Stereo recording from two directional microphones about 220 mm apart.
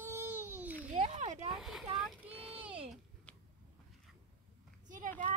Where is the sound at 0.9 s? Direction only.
30° right (ahead or behind).